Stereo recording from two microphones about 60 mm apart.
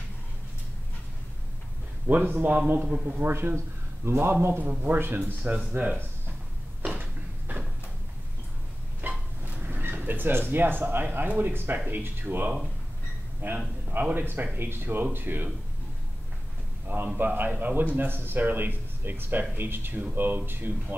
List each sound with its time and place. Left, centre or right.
2.0 s a man's voice: right
3.5 s a man's voice: right
6.9 s a sound: right
9.0 s vehicle: right
9.4 s a sound: right
10.5 s speech: right
16.8 s a man's voice: right